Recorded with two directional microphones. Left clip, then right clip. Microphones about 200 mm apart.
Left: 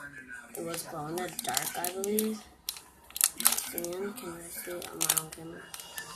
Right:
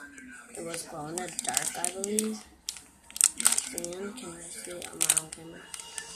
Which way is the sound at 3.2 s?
5° right (ahead or behind).